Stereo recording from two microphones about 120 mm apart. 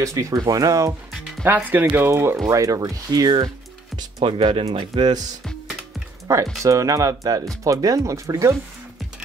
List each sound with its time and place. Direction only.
0.0 s speech: 25° right (ahead or behind)
1.4 s speech: 15° right (ahead or behind); by 5.2 s 40° right (ahead or behind)
6.3 s speech: 25° right (ahead or behind)